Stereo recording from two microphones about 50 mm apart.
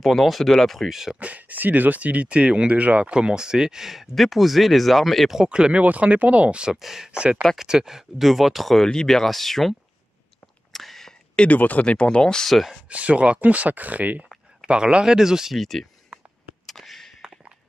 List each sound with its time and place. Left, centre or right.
0.0 s speech: centre
1.2 s speech: right; by 5.3 s centre
5.3 s speech: centre
6.8 s speech: centre
7.1 s speech: right; by 9.8 s centre
10.7 s a sound: centre
11.3 s speech: left
12.4 s speech: centre
12.8 s speech: right
14.7 s speech: centre
15.5 s speech: centre
16.6 s a sound: centre